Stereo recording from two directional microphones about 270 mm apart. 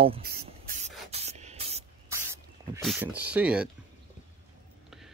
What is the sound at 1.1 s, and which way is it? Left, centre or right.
Spray, right.